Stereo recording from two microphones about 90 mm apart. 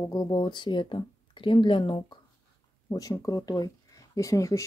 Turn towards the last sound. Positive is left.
turn(degrees=35)  # may be behind; listen again after turning